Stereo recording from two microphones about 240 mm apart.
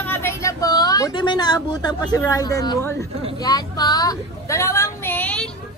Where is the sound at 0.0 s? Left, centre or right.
Centre.